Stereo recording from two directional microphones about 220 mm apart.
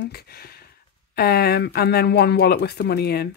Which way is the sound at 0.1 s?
45° left (ahead or behind).